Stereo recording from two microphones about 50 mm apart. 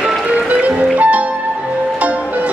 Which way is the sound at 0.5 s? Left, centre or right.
Right.